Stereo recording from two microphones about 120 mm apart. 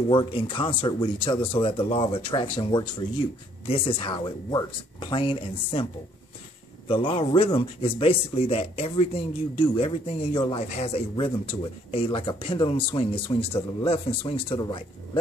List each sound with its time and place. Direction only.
0.1 s speech: 45° left (ahead or behind)
6.9 s speech: 50° left (ahead or behind)